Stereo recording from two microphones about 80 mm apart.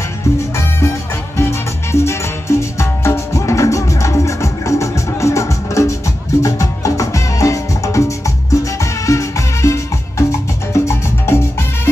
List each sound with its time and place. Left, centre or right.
1.4 s music: left